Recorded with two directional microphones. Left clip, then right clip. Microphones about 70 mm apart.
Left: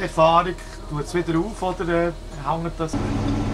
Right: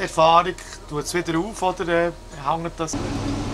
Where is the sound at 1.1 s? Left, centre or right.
Right.